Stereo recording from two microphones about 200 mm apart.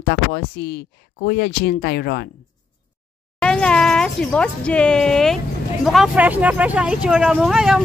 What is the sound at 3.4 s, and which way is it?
Speech, 5° left (ahead or behind).